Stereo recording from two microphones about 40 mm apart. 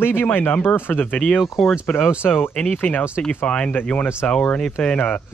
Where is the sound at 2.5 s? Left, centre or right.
Left.